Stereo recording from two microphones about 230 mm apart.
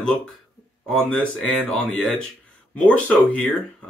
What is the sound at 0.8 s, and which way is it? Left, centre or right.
Speech, centre.